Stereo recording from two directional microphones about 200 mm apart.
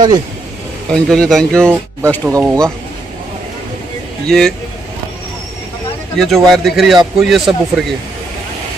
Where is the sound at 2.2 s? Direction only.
15° right (ahead or behind).